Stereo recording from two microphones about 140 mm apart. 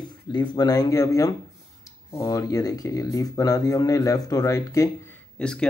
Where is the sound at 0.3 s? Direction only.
30° left (ahead or behind).